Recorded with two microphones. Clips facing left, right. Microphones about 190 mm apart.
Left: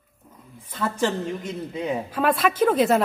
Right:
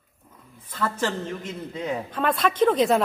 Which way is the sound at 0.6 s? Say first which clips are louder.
Left 2 dB; 10° left (ahead or behind).